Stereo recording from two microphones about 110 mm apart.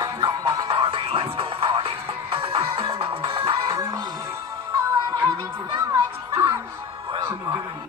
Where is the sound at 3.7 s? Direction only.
35° right (ahead or behind).